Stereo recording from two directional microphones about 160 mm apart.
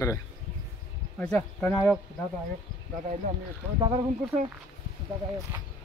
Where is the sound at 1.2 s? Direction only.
10° left (ahead or behind).